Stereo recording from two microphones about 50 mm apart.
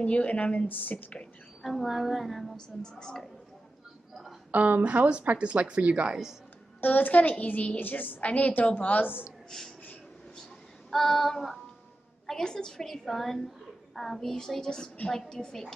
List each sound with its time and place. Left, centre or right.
0.0 s speech: left
0.7 s a woman's voice: left
1.6 s a woman's voice: centre
2.5 s a child's voice: centre
4.1 s a sound: centre
4.5 s a woman's voice: right
6.8 s a woman's voice: left
9.5 s speech: centre
10.9 s a woman's voice: centre